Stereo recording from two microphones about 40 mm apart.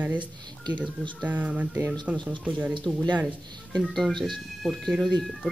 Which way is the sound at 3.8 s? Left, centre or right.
Centre.